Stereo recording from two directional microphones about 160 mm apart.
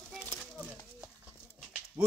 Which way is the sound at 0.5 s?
10° right (ahead or behind).